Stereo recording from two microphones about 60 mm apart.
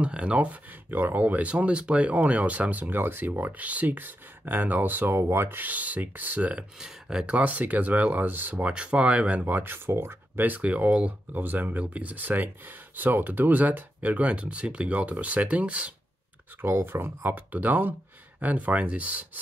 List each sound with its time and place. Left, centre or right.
0.0 s speech: right
5.1 s speech: right
6.8 s speech: centre; by 8.6 s right
8.6 s speech: centre
9.8 s speech: right
16.6 s speech: right